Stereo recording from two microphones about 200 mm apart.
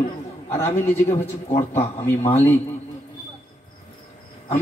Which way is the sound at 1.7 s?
30° left (ahead or behind).